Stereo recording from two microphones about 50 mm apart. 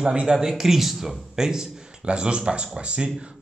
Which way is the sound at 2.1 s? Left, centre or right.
Right.